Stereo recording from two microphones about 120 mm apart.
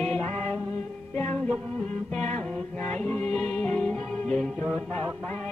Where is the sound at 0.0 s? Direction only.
15° left (ahead or behind).